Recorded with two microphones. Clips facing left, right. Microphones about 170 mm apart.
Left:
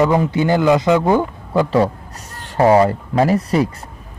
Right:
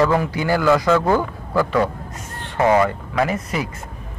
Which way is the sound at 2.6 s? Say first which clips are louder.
Left 4 dB; 35° left (ahead or behind).